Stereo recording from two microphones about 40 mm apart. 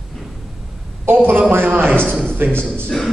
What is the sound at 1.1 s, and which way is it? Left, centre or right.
Speech, right.